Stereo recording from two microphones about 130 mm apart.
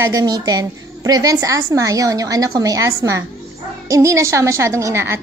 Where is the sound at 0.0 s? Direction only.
30° right (ahead or behind).